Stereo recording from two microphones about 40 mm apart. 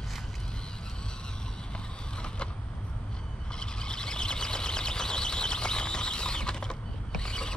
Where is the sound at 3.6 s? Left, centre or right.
Left.